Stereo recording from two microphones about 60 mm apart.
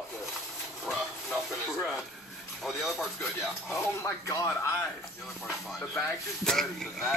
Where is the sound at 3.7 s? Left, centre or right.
Left.